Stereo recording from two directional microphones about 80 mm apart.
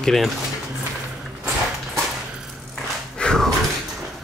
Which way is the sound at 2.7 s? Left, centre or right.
Centre.